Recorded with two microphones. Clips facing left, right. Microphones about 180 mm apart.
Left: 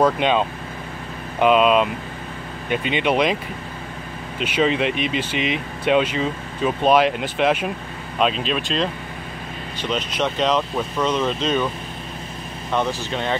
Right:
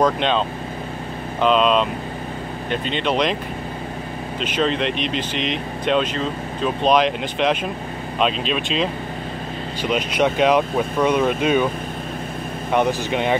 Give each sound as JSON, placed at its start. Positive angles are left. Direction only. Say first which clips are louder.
{"t": 0.0, "sound": "speech", "louder": "left 1 dB", "side_deg": 10}
{"t": 4.4, "sound": "speech", "louder": "left 2 dB", "side_deg": 10}
{"t": 12.7, "sound": "speech", "louder": "right 4 dB", "side_deg": -15}